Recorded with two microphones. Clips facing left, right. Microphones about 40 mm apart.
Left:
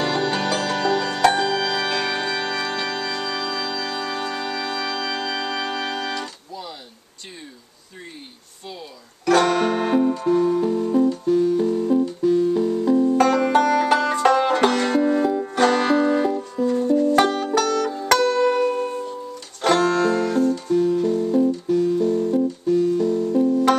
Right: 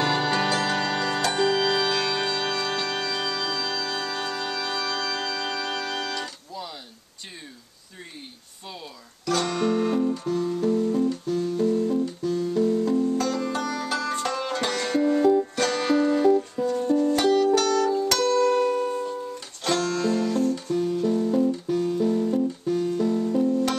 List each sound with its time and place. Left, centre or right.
0.0 s music: centre
1.9 s music: left
2.1 s music: centre
6.1 s music: centre
9.2 s music: left
10.2 s music: left
13.1 s banjo: left
14.5 s music: left
15.5 s music: left
16.8 s music: centre
17.1 s music: left
18.2 s music: left
19.6 s music: left
21.0 s music: centre